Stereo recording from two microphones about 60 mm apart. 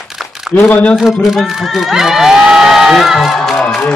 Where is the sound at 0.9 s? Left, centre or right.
Centre.